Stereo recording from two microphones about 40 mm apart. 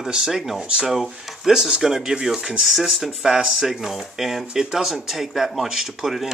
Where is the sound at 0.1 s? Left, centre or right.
Centre.